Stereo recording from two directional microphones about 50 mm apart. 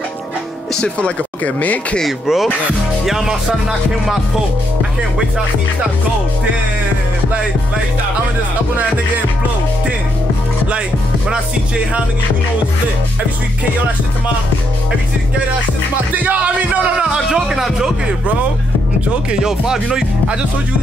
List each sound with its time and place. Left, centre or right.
0.7 s speech: left
2.0 s music: centre
17.0 s music: centre
19.4 s music: centre